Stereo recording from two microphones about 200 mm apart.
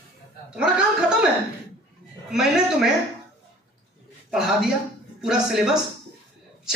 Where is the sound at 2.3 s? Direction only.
Centre (ahead or behind).